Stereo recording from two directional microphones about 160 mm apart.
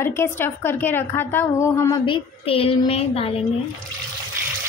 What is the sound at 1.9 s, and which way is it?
A woman's voice, 30° left (ahead or behind).